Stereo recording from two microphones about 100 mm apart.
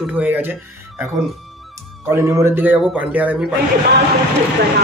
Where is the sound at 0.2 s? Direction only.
15° right (ahead or behind).